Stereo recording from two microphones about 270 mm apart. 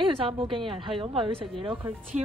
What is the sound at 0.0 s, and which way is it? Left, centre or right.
A woman's voice, centre.